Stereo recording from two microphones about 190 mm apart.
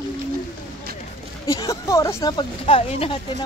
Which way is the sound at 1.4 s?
15° left (ahead or behind).